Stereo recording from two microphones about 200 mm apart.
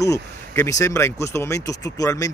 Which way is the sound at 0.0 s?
15° left (ahead or behind).